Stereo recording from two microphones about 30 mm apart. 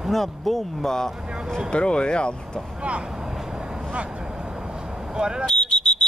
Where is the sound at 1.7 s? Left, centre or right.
Left.